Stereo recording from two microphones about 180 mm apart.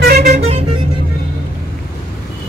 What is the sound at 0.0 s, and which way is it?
Vehicle, 60° right (ahead or behind).